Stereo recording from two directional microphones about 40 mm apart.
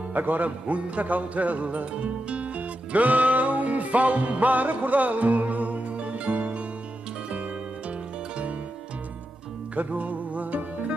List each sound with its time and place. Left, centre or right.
0.1 s music: right
9.8 s music: right